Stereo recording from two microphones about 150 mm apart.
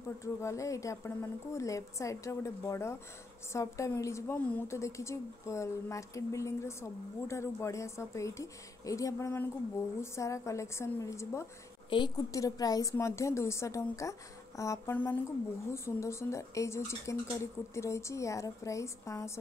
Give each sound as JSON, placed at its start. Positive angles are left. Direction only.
{"t": 0.2, "sound": "a woman's voice", "side_deg": 20}